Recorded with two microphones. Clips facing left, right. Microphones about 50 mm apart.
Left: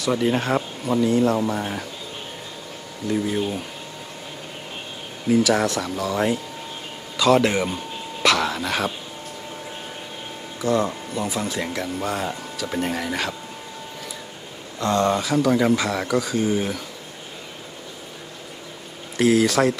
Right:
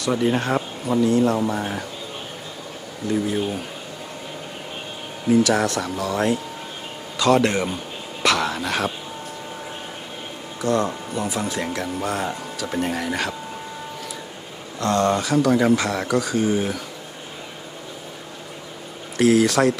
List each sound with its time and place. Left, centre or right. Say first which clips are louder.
0.0 s speech: even; centre
3.1 s speech: right 1 dB; centre
5.3 s speech: right 1 dB; centre
10.6 s speech: even; centre
14.8 s speech: right 1 dB; centre
19.1 s speech: right 1 dB; centre